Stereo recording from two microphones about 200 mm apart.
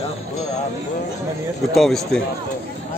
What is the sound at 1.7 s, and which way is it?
Speech, centre (ahead or behind).